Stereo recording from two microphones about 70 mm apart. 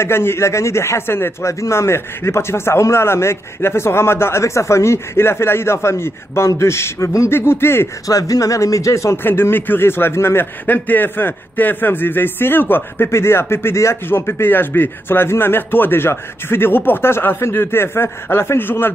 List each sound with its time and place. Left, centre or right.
0.0 s a man's voice: left
8.1 s speech: left
9.2 s a man's voice: left
10.4 s a man's voice: left